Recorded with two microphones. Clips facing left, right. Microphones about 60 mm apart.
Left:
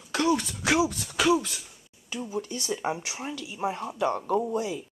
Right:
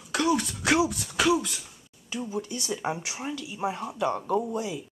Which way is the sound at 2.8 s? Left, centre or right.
Centre.